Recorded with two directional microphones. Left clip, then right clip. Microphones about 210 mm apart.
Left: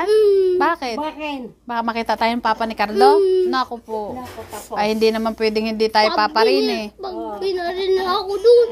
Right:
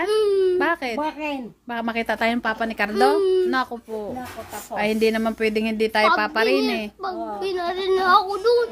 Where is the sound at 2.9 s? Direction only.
15° right (ahead or behind).